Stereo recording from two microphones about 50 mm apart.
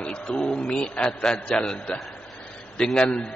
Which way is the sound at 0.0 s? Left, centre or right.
Centre.